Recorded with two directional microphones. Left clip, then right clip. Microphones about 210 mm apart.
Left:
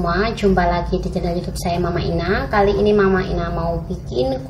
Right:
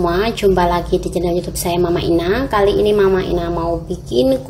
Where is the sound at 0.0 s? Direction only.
35° right (ahead or behind).